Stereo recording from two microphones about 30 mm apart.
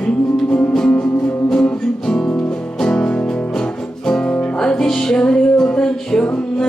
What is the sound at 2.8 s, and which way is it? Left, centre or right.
Music, left.